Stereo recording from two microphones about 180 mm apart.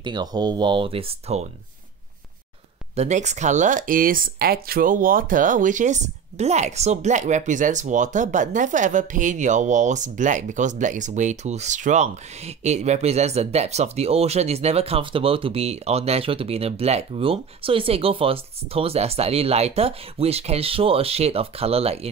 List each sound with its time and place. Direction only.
0.0 s speech: 25° right (ahead or behind)
3.0 s speech: 40° right (ahead or behind)